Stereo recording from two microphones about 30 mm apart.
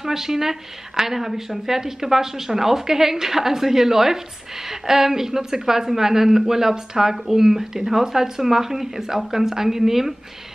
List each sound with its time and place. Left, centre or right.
0.0 s speech: centre